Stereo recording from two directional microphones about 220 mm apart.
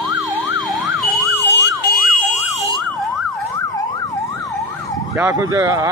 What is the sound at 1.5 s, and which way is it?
Emergency vehicle, 55° left (ahead or behind).